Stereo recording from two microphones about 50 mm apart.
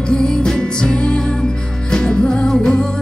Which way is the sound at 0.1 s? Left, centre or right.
Centre.